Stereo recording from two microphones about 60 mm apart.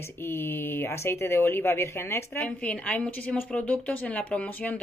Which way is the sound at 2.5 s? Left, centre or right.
Left.